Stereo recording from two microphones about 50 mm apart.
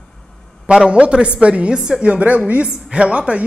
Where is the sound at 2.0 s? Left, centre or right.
Right.